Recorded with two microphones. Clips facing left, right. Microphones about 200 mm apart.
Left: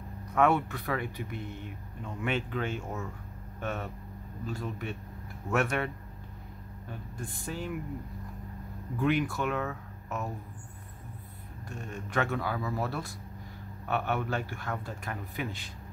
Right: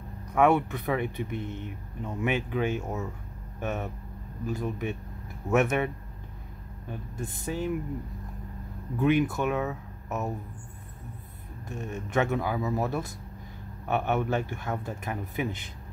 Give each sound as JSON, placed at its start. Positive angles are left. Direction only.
{"t": 0.3, "sound": "speech", "side_deg": -15}
{"t": 6.9, "sound": "speech", "side_deg": -20}
{"t": 8.9, "sound": "speech", "side_deg": -20}
{"t": 11.7, "sound": "speech", "side_deg": -20}